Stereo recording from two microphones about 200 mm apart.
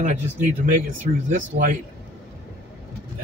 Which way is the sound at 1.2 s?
40° right (ahead or behind).